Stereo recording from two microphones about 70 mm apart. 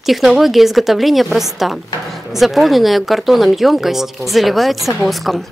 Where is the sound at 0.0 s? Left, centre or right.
Centre.